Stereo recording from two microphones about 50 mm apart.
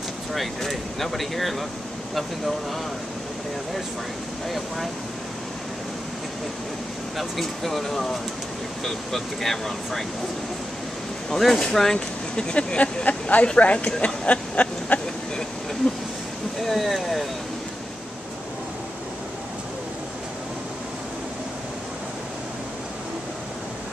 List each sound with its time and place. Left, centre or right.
0.3 s speech: centre
7.2 s speech: centre
11.2 s speech: centre; by 13.9 s left
14.0 s a sound: left
16.6 s speech: centre